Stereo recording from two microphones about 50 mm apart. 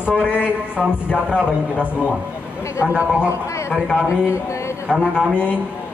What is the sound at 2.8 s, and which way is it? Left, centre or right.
Speech, right.